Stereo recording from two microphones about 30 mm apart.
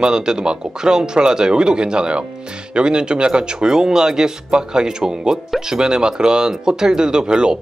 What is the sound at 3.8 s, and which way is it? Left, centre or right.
Speech, right.